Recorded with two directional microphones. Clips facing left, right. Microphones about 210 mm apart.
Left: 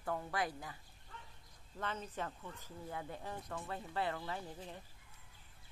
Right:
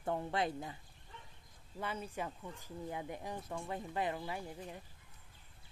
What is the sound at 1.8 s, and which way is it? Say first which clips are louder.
Speech: right 1 dB; 10° right (ahead or behind).